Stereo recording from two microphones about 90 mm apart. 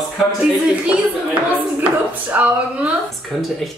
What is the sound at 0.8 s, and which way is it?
A woman's voice, 15° right (ahead or behind).